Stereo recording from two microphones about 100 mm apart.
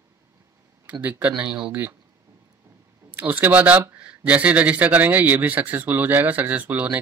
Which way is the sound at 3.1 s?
20° right (ahead or behind).